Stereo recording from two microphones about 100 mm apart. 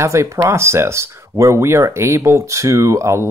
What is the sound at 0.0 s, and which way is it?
Speech, 30° right (ahead or behind).